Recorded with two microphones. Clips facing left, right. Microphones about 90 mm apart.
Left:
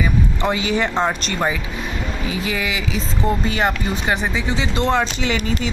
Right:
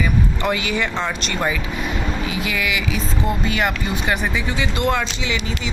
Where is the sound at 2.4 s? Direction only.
30° left (ahead or behind).